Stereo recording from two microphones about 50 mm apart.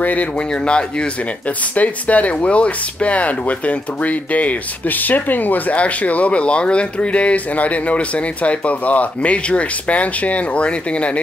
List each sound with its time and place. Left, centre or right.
0.0 s speech: left
0.5 s speech: centre